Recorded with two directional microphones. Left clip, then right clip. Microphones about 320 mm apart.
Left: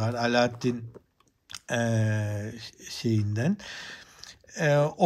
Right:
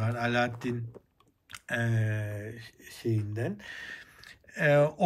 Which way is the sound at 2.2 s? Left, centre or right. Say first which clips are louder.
Left 4 dB; left.